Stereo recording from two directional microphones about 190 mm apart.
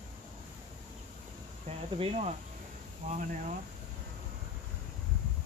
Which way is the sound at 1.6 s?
30° right (ahead or behind).